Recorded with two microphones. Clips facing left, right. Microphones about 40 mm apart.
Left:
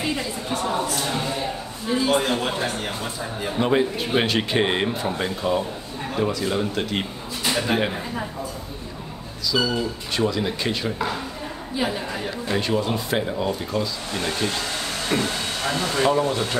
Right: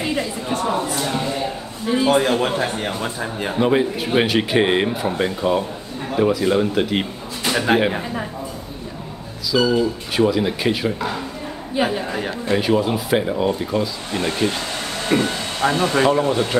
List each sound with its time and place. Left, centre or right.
0.0 s chatter: centre
1.9 s a man's voice: right
3.5 s speech: centre
7.5 s a man's voice: right
9.6 s speech: centre
12.5 s speech: centre
15.7 s speech: right